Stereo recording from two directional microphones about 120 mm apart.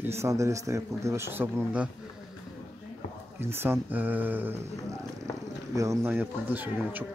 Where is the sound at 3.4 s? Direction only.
20° right (ahead or behind).